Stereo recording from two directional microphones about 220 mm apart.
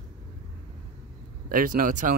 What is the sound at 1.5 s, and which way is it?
Speech, 40° right (ahead or behind).